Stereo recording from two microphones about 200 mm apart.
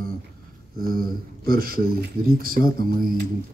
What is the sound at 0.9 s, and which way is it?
A man's voice, 45° right (ahead or behind).